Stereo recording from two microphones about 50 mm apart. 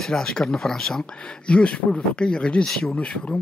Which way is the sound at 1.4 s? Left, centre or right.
Left.